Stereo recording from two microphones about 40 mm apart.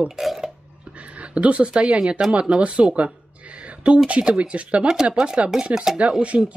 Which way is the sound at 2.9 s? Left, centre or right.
Right.